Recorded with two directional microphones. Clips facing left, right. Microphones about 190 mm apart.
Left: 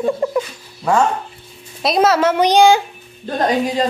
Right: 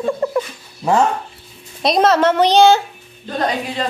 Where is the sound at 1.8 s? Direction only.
5° left (ahead or behind).